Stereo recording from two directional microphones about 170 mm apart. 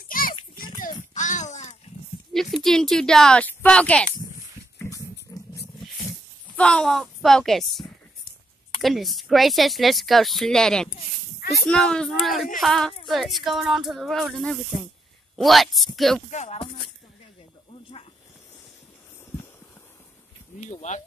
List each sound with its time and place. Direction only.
0.1 s a sound: 55° left (ahead or behind)
2.5 s speech: centre (ahead or behind)
4.7 s wild animals: 20° left (ahead or behind)
5.3 s roaring cats: 20° left (ahead or behind)
6.5 s speech: 5° left (ahead or behind)
8.8 s speech: centre (ahead or behind)
16.3 s speech: 40° left (ahead or behind)
20.7 s speech: 45° left (ahead or behind)